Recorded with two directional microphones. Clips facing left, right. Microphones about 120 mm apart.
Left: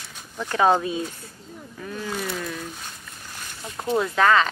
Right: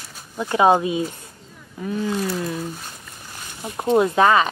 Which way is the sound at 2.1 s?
5° right (ahead or behind).